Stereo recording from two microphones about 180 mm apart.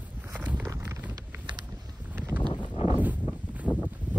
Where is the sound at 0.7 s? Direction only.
15° right (ahead or behind).